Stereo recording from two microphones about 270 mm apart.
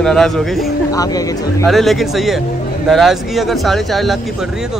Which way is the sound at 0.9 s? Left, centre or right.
Centre.